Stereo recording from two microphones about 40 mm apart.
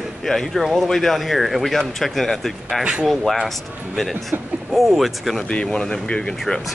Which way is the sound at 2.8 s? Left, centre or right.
Right.